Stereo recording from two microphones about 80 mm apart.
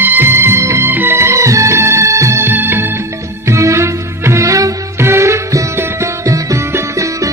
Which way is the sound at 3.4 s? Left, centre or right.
Right.